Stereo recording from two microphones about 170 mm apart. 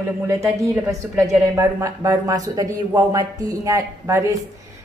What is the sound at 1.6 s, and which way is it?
Speech, 20° right (ahead or behind).